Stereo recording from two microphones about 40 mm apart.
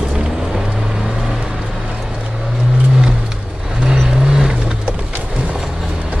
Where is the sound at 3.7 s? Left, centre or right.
Centre.